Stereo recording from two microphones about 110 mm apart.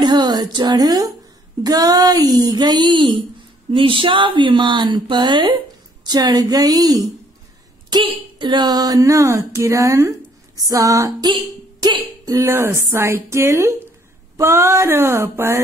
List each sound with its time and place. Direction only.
0.0 s speech: 40° right (ahead or behind)
12.4 s a woman's voice: 25° right (ahead or behind)